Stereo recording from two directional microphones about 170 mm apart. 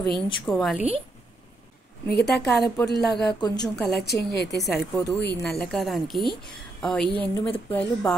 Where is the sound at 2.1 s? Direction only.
70° left (ahead or behind).